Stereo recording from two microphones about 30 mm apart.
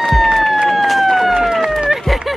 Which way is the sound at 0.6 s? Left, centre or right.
Centre.